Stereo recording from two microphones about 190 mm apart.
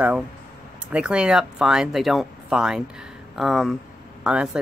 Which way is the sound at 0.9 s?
5° right (ahead or behind).